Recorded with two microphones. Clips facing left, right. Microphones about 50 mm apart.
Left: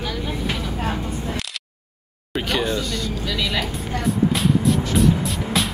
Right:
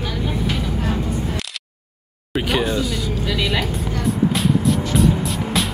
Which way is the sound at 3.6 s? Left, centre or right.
Centre.